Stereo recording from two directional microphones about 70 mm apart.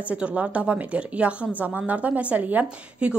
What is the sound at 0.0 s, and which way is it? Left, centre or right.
A woman's voice, centre.